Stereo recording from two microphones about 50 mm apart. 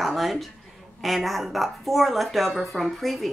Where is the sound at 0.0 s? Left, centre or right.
Centre.